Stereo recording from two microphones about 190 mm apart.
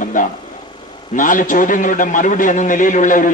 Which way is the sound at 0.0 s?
45° left (ahead or behind).